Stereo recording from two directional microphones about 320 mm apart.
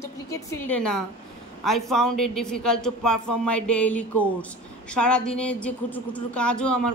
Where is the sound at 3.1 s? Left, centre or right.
Left.